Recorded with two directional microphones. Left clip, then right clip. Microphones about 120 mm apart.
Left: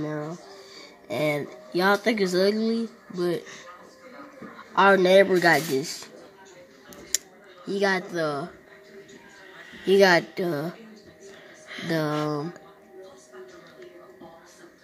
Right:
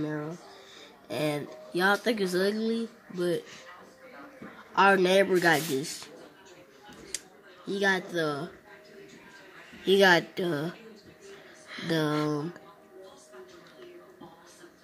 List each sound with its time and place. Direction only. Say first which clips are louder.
0.0 s a sound: left 2 dB; centre (ahead or behind)
1.3 s speech: left 5 dB; 15° left (ahead or behind)
4.7 s speech: left 5 dB; 5° left (ahead or behind)
7.1 s a sound: left 11 dB; 40° left (ahead or behind)
7.6 s speech: left 3 dB; 10° right (ahead or behind)
9.8 s speech: left 3 dB; 10° right (ahead or behind)